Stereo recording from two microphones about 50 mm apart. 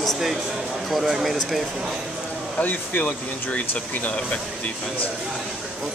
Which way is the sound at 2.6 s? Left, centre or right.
Left.